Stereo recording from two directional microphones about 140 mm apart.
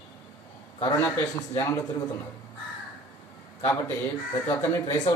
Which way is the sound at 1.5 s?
25° left (ahead or behind).